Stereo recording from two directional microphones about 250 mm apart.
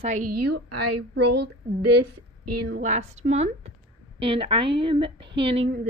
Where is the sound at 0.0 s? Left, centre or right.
Right.